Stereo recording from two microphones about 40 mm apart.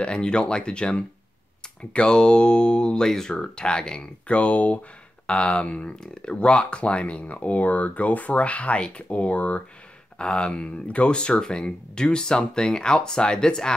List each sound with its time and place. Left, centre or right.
0.0 s speech: left
3.1 s speech: centre
3.3 s speech: left
5.2 s speech: left
10.1 s speech: left